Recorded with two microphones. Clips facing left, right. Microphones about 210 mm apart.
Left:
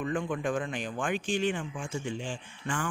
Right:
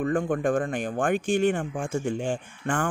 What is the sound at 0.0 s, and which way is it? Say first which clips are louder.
A man's voice: right 6 dB; 50° right (ahead or behind).